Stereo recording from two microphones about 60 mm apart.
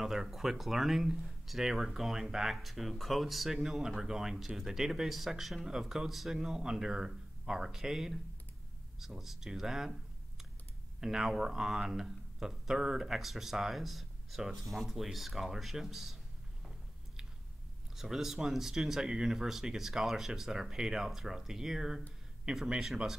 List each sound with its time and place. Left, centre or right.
0.0 s speech: centre
11.0 s speech: centre
17.9 s speech: centre